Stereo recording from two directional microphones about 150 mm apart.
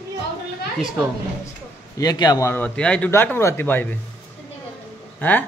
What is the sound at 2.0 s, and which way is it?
A man's voice, 25° left (ahead or behind).